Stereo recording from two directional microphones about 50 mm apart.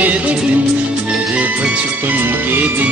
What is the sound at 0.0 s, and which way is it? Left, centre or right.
Music, right.